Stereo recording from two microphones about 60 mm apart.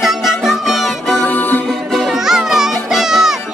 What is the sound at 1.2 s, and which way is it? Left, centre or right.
Music, left.